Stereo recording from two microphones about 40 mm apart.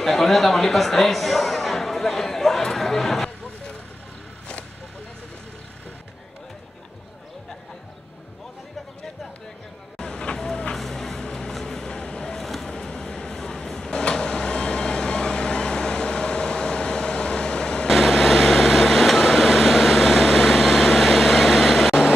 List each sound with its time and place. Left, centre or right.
0.0 s speech: centre
9.9 s vehicle: centre
10.7 s music: centre
11.2 s music: left
11.6 s a sound: centre
12.4 s vehicle: centre
12.7 s vehicle: left
17.8 s vehicle: centre